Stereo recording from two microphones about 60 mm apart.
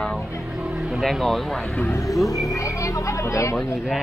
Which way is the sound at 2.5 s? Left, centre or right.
Left.